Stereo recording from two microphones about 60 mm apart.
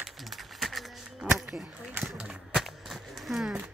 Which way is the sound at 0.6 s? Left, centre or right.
Centre.